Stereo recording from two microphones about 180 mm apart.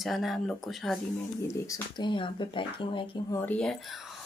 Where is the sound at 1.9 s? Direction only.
25° left (ahead or behind).